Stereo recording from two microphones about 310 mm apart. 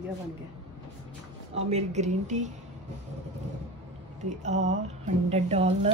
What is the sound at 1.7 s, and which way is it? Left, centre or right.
Speech, right.